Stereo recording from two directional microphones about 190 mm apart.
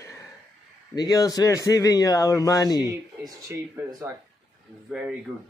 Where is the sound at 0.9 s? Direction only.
20° left (ahead or behind).